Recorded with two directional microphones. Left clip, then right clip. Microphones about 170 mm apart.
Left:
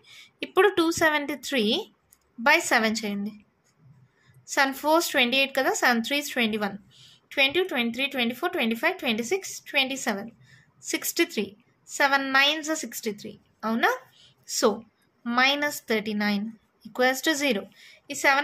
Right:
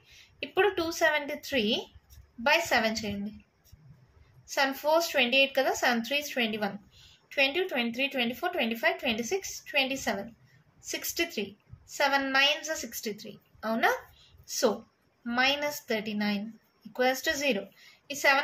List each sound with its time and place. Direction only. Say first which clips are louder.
0.1 s a woman's voice: left 6 dB; 45° left (ahead or behind)
4.5 s a woman's voice: left 4 dB; 45° left (ahead or behind)
15.2 s a woman's voice: left 4 dB; 50° left (ahead or behind)